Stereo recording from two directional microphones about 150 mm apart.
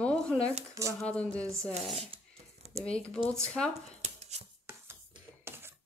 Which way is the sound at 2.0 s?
45° right (ahead or behind).